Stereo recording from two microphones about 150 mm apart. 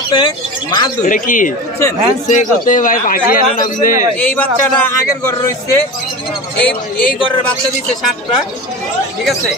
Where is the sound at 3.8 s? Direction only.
60° left (ahead or behind).